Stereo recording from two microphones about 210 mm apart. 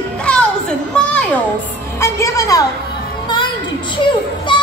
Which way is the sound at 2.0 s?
15° left (ahead or behind).